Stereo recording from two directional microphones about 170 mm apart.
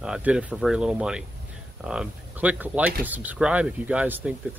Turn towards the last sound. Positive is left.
turn(degrees=-10)  # may be behind; listen again after turning